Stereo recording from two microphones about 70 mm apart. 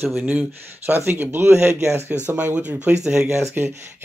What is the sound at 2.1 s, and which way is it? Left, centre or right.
Speech, centre.